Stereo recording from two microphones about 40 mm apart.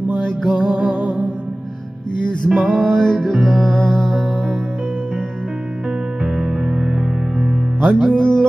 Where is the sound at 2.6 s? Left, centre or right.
Centre.